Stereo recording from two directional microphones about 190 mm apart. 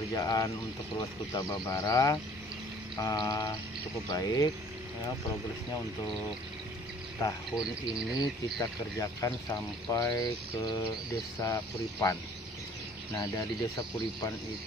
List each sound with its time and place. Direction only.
0.1 s speech: 20° left (ahead or behind)
8.2 s speech: 20° left (ahead or behind)